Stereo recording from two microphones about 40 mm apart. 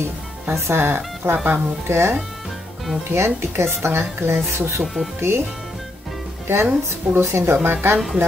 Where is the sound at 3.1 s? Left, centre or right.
Right.